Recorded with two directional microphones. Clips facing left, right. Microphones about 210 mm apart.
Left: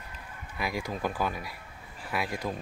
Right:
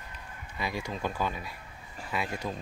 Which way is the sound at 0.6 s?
10° left (ahead or behind).